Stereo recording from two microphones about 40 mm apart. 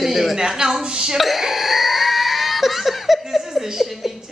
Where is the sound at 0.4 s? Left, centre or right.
Centre.